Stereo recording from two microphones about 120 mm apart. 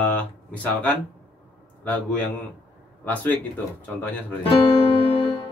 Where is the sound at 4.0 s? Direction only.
15° left (ahead or behind).